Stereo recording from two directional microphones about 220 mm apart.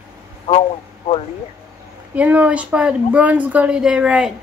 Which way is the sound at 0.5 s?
25° left (ahead or behind).